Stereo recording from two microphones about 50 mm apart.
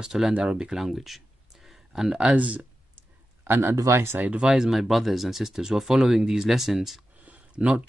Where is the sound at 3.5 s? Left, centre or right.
Right.